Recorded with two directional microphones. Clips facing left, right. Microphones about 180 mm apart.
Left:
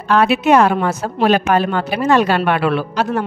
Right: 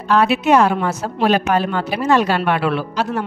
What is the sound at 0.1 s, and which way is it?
A woman's voice, 60° left (ahead or behind).